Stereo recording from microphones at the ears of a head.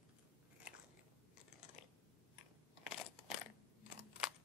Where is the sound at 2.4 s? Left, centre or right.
Left.